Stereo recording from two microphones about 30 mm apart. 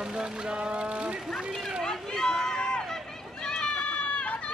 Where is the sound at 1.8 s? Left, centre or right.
Centre.